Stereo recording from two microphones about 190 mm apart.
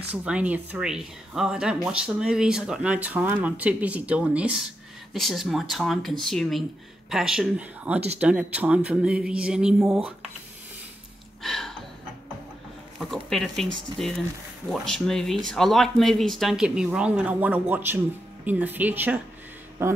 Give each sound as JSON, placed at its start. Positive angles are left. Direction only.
{"t": 0.1, "sound": "speech", "side_deg": -5}
{"t": 11.4, "sound": "a sound", "side_deg": 0}
{"t": 13.0, "sound": "speech", "side_deg": 0}